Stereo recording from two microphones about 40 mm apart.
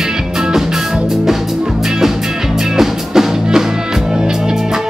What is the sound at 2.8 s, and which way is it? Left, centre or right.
Music, centre.